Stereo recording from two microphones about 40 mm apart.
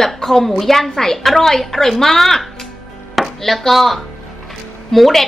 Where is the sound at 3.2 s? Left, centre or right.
Centre.